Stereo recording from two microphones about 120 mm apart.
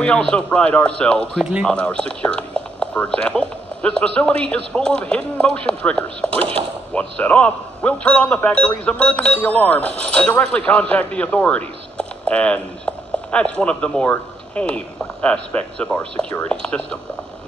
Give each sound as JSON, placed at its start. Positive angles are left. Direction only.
{"t": 0.0, "sound": "speech", "side_deg": 10}
{"t": 6.3, "sound": "speech", "side_deg": -55}
{"t": 6.9, "sound": "speech", "side_deg": 10}